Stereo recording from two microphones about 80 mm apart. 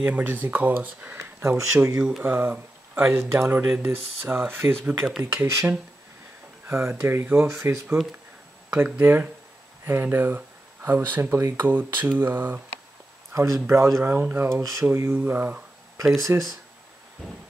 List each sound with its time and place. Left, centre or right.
0.0 s speech: right
1.7 s speech: right
2.0 s speech: centre
3.3 s speech: right
8.6 s speech: right
13.3 s speech: right
14.6 s a sound: right
14.9 s speech: right
16.3 s speech: right